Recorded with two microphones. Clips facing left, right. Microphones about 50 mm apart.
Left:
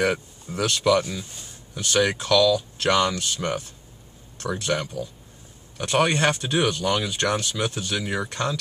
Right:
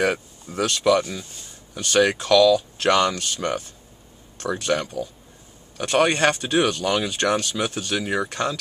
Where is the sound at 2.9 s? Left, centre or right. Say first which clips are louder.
Right 2 dB; centre.